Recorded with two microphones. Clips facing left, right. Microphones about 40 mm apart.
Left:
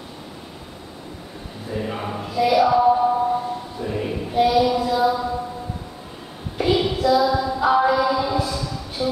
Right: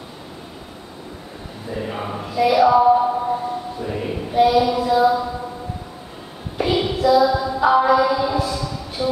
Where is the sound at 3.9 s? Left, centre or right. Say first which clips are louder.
Right 1 dB; centre.